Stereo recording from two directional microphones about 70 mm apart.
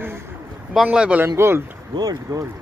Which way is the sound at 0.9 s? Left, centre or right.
Centre.